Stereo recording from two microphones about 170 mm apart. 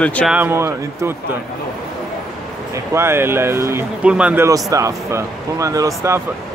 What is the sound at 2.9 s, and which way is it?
Speech, 15° right (ahead or behind).